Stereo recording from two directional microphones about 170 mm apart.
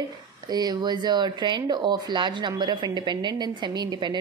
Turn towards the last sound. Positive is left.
turn(degrees=-25)  # may be behind; listen again after turning